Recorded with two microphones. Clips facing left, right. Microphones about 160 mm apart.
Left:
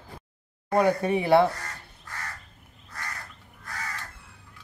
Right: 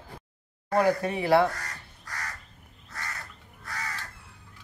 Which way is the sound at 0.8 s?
20° left (ahead or behind).